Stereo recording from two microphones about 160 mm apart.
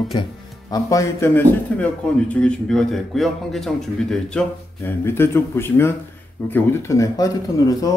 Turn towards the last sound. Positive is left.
turn(degrees=20)  # may be behind; listen again after turning